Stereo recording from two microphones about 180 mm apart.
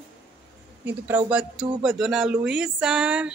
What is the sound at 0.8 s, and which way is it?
A woman's voice, 10° right (ahead or behind).